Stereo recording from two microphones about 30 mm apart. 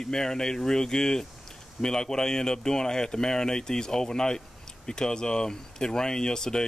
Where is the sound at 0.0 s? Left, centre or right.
Left.